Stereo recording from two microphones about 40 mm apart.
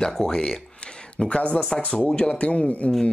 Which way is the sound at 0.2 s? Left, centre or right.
Left.